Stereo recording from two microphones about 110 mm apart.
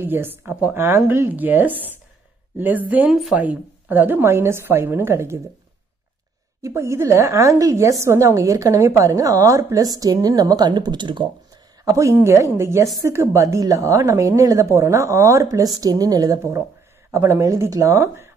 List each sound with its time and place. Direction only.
0.0 s speech: 20° right (ahead or behind)
3.1 s a woman's voice: 5° right (ahead or behind)
3.3 s a woman's voice: 15° right (ahead or behind)
6.6 s a woman's voice: 25° right (ahead or behind); by 11.2 s 45° right (ahead or behind)
11.8 s a woman's voice: 30° right (ahead or behind)